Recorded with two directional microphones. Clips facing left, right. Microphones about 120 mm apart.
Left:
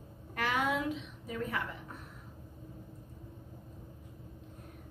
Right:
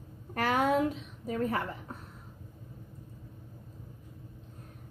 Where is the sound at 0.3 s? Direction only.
40° right (ahead or behind).